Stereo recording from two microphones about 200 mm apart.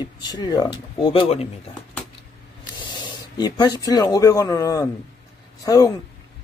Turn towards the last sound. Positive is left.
turn(degrees=15)  # may be behind; listen again after turning